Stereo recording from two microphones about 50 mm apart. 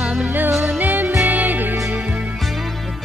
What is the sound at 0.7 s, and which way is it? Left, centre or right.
Music, right.